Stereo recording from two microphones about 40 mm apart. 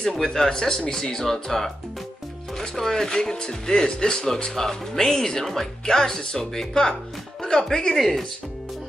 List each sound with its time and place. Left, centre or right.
0.1 s speech: centre